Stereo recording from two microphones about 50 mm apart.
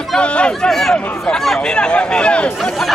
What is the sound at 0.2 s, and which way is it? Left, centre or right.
Speech, left.